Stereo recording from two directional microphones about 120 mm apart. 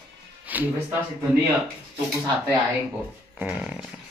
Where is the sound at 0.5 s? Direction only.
15° right (ahead or behind).